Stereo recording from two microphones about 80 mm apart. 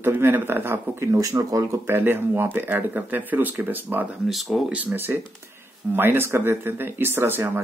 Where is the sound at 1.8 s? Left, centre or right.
Right.